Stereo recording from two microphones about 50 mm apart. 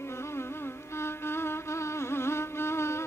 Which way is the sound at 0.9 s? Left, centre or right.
Left.